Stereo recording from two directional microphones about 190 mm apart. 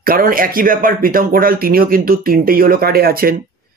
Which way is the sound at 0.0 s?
50° right (ahead or behind).